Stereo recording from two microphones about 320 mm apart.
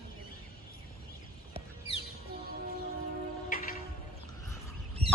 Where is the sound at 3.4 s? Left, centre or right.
Left.